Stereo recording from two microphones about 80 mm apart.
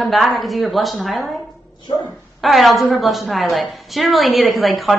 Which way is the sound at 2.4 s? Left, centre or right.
Centre.